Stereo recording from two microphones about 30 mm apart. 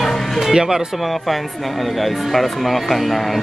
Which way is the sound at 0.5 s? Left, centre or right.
Centre.